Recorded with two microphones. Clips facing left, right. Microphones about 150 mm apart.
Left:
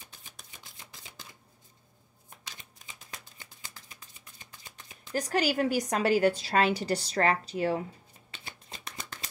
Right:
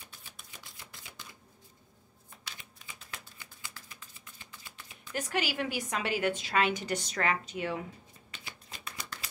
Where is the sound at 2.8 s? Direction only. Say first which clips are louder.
Right 1 dB; 45° left (ahead or behind).